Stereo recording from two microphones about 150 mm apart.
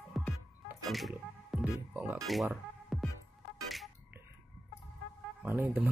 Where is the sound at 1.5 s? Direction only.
Centre (ahead or behind).